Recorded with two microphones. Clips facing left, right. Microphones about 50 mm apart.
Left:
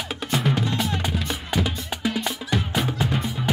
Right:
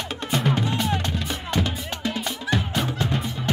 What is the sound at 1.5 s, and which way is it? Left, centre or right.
Music, centre.